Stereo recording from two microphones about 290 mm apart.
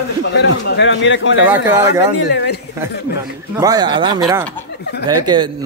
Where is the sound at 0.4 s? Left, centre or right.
Left.